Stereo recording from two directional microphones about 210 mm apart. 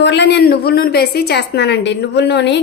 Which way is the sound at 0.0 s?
55° left (ahead or behind).